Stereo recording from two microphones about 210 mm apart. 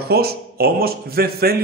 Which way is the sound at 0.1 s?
50° right (ahead or behind).